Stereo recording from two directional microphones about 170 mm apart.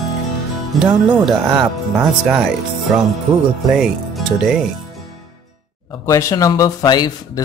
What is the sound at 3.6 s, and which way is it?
Speech, centre (ahead or behind).